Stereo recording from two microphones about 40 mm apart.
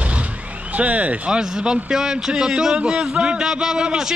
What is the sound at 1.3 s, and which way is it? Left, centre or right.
A man's voice, centre.